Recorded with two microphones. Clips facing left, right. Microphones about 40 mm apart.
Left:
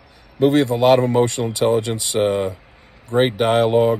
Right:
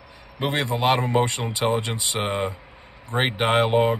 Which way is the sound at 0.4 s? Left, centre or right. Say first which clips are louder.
Left 8 dB; right.